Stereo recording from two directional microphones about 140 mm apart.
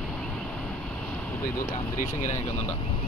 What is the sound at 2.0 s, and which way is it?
Speech, 60° left (ahead or behind).